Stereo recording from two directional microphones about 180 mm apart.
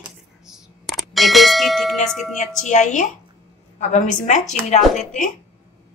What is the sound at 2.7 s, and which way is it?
A woman's voice, 45° left (ahead or behind).